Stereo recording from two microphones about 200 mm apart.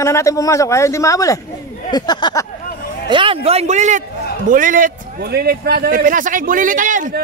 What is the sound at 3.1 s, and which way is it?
A man's voice, 25° right (ahead or behind).